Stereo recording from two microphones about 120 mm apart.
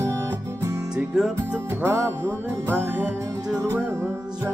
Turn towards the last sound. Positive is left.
turn(degrees=-20)  # may be behind; listen again after turning